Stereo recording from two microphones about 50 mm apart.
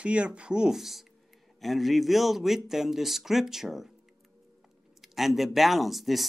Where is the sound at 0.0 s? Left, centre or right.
Right.